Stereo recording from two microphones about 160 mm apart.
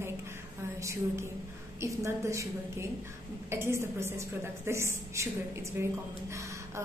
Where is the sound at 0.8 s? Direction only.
15° right (ahead or behind).